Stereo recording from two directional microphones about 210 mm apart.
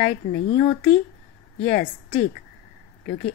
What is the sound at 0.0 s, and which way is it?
Speech, 30° left (ahead or behind).